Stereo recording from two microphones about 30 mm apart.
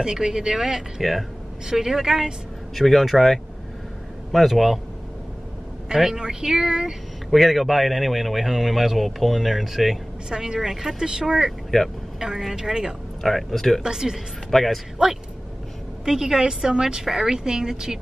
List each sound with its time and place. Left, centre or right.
0.0 s a woman's voice: right
2.7 s speech: centre
5.9 s speech: centre
7.2 s speech: centre
10.3 s speech: right
11.7 s speech: left
12.2 s a woman's voice: centre
13.2 s speech: centre
13.8 s a woman's voice: centre
14.5 s speech: centre
15.0 s speech: right
16.8 s speech: centre